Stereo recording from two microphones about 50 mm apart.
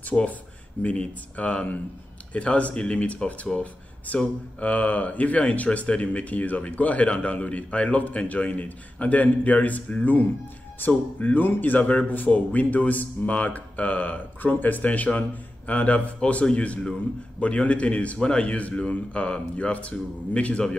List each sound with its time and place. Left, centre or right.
0.1 s speech: centre
0.8 s speech: left
4.6 s speech: left